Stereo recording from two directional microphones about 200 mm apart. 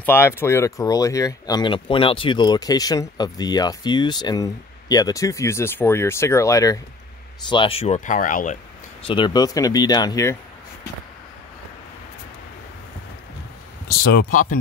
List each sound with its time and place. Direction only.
0.0 s speech: 10° left (ahead or behind); by 8.5 s 40° left (ahead or behind)
9.0 s speech: 25° left (ahead or behind)
13.8 s speech: 45° left (ahead or behind)